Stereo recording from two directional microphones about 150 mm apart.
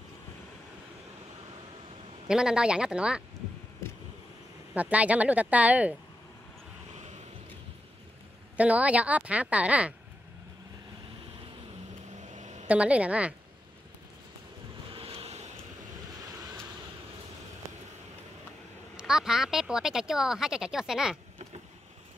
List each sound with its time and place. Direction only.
2.2 s speech: 5° right (ahead or behind)
4.7 s a woman's voice: 10° right (ahead or behind)
8.5 s a woman's voice: 10° right (ahead or behind)
12.2 s a sound: 50° right (ahead or behind)
12.6 s a woman's voice: 10° right (ahead or behind)
14.9 s wind: 40° right (ahead or behind)
18.9 s speech: 5° right (ahead or behind)